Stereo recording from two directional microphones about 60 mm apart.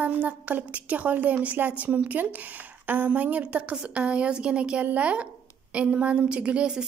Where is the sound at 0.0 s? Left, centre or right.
Right.